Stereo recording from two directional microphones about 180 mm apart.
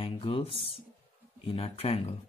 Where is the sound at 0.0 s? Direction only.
30° left (ahead or behind).